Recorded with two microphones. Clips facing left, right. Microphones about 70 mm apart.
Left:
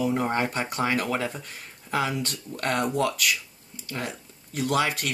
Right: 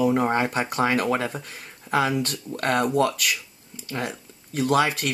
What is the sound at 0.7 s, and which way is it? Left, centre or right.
Speech, right.